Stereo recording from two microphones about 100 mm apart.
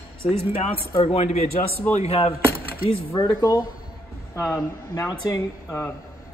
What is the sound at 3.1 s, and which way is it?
Speech, 40° left (ahead or behind).